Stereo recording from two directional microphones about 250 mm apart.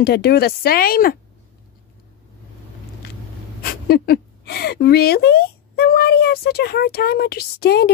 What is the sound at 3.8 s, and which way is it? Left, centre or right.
Speech, left.